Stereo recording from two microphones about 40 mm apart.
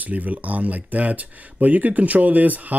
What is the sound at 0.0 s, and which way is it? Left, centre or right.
Speech, right.